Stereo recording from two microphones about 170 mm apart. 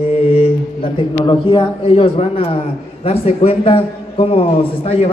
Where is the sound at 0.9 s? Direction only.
30° left (ahead or behind).